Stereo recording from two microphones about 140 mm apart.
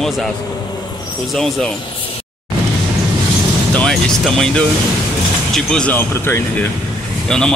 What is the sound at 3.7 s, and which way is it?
Speech, 5° left (ahead or behind).